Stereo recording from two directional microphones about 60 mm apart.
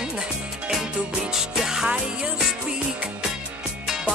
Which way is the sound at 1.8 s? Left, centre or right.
Centre.